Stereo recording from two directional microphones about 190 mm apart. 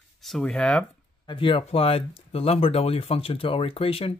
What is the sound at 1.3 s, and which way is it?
Speech, 30° left (ahead or behind).